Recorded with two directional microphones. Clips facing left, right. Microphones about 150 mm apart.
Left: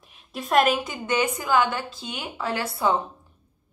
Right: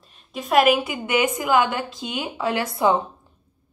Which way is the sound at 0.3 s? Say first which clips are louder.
Right 3 dB; centre (ahead or behind).